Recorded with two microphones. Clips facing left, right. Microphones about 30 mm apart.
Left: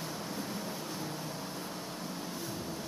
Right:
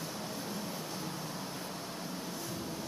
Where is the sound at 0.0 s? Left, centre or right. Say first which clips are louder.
Left 1 dB; centre.